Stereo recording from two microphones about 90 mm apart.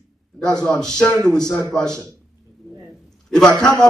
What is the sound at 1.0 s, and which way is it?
A man's voice, 15° left (ahead or behind).